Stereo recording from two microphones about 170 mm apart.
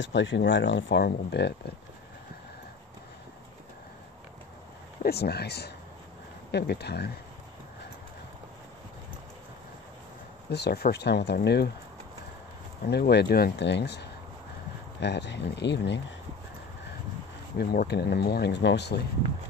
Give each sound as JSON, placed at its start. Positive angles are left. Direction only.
{"t": 0.0, "sound": "speech", "side_deg": 90}
{"t": 5.0, "sound": "speech", "side_deg": 70}
{"t": 10.5, "sound": "speech", "side_deg": 70}
{"t": 12.8, "sound": "speech", "side_deg": 65}
{"t": 17.6, "sound": "speech", "side_deg": 65}